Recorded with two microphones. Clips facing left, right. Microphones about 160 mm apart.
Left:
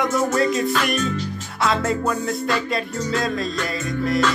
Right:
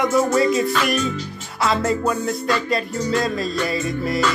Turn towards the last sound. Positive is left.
turn(degrees=0)  # may be behind; listen again after turning